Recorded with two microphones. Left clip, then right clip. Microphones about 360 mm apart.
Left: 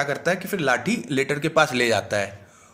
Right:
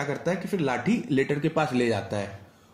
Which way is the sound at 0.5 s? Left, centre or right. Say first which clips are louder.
Left 5 dB; left.